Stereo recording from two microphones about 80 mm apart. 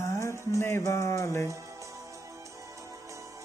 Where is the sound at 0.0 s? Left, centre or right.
Left.